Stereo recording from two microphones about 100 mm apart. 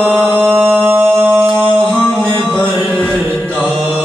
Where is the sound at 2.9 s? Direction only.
10° left (ahead or behind).